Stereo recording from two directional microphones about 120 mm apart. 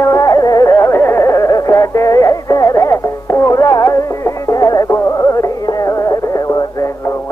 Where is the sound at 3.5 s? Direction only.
30° left (ahead or behind).